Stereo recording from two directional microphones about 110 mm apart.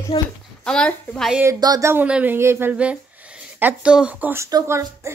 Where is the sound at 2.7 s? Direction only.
10° right (ahead or behind).